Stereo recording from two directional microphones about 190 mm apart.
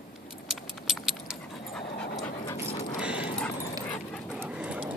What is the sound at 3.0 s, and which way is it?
Dog, 5° right (ahead or behind).